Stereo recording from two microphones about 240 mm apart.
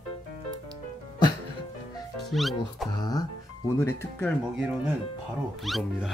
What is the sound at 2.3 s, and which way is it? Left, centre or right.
Speech, centre.